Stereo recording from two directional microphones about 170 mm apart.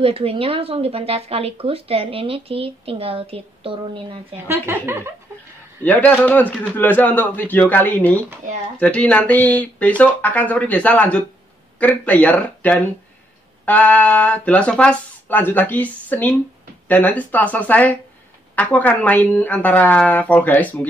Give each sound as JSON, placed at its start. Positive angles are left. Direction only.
{"t": 0.0, "sound": "speech", "side_deg": -35}
{"t": 4.5, "sound": "speech", "side_deg": -15}
{"t": 5.9, "sound": "speech", "side_deg": 10}